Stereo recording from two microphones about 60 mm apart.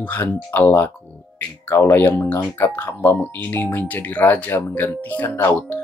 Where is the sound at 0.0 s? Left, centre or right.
Left.